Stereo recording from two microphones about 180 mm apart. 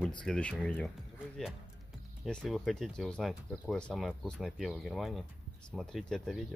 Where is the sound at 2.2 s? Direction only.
Centre (ahead or behind).